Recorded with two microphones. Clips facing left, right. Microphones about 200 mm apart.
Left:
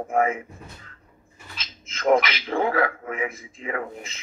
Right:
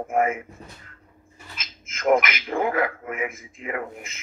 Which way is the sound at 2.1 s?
30° left (ahead or behind).